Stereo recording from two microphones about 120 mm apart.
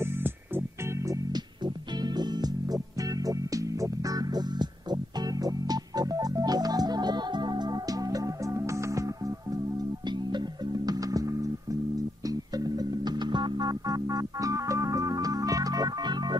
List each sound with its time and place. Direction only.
0.0 s music: 20° right (ahead or behind); by 16.3 s 35° right (ahead or behind)